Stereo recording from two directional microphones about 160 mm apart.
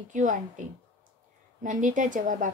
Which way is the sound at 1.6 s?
50° right (ahead or behind).